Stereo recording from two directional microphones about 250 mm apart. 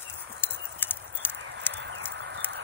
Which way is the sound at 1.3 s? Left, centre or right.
Right.